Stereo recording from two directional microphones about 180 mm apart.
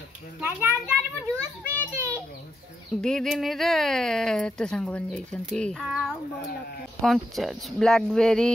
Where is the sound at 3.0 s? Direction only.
5° left (ahead or behind).